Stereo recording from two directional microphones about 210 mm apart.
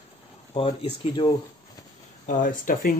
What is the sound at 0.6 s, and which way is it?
Speech, 25° left (ahead or behind).